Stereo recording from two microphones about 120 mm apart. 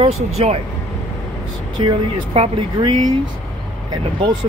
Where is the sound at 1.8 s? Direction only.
50° right (ahead or behind).